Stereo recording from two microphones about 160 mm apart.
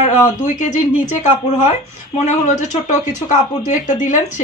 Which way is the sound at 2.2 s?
50° left (ahead or behind).